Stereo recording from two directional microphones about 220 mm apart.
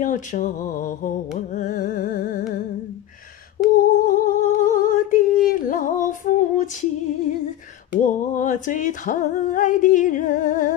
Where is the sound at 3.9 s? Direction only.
40° left (ahead or behind).